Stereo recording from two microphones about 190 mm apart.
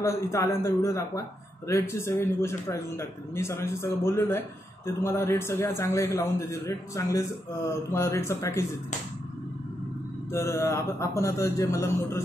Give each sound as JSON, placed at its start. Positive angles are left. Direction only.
{"t": 0.0, "sound": "a man's voice", "side_deg": 15}
{"t": 10.3, "sound": "a man's voice", "side_deg": 15}